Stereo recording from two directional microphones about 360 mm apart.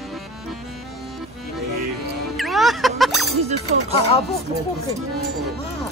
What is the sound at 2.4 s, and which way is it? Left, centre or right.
Music, centre.